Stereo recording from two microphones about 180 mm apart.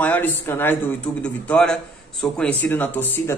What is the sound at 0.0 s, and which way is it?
Speech, 10° left (ahead or behind).